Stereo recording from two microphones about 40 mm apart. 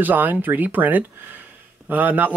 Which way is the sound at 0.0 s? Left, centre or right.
Right.